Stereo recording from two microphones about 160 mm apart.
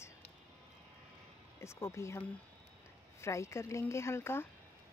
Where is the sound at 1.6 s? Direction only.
15° left (ahead or behind).